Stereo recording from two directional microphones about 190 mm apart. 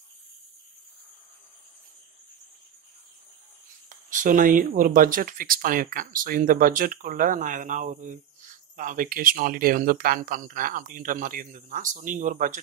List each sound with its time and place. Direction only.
4.1 s speech: 45° right (ahead or behind)